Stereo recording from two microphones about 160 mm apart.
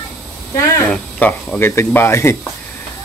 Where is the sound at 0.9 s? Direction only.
10° left (ahead or behind).